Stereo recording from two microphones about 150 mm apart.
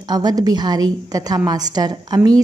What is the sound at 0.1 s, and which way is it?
A woman's voice, 25° right (ahead or behind).